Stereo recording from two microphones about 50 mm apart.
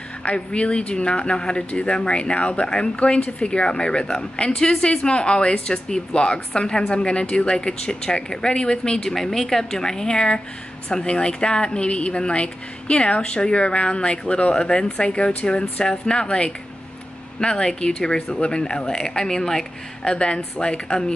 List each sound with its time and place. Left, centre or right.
0.2 s speech: left